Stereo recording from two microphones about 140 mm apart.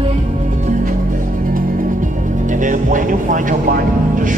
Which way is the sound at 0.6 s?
75° right (ahead or behind).